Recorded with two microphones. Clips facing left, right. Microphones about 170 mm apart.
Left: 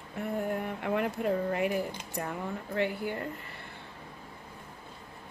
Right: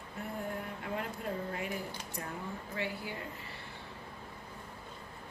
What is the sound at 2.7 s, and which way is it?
Speech, 55° left (ahead or behind).